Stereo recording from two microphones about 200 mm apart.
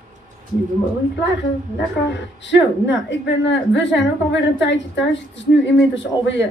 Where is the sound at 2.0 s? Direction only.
65° left (ahead or behind).